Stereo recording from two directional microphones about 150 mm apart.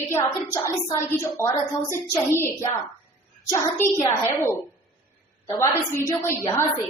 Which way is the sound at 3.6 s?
20° left (ahead or behind).